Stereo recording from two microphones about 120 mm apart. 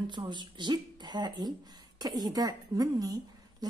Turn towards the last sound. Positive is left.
turn(degrees=-30)  # may be behind; listen again after turning